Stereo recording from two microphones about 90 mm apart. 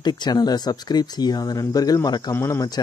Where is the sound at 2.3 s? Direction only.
30° left (ahead or behind).